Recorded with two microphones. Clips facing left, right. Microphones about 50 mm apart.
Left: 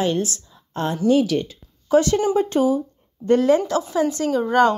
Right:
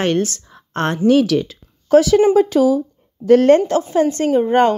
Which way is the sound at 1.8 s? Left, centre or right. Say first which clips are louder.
Right 6 dB; right.